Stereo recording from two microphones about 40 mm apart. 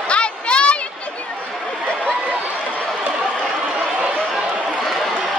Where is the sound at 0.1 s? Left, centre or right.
Left.